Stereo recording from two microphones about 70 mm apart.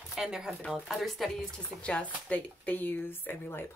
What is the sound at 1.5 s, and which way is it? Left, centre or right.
Speech, centre.